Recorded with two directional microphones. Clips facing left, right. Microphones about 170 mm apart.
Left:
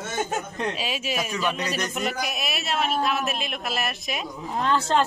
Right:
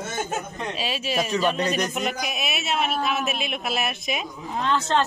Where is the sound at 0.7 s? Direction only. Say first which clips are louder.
Right 2 dB; 10° left (ahead or behind).